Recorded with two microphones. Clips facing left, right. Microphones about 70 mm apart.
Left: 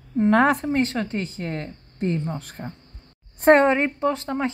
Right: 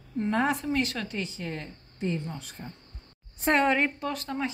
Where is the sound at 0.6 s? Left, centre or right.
Left.